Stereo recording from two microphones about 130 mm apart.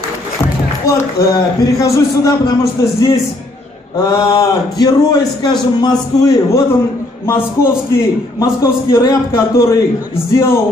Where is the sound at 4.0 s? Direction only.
35° left (ahead or behind).